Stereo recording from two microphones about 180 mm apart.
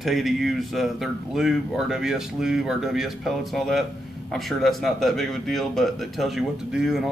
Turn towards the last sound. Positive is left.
turn(degrees=-5)  # may be behind; listen again after turning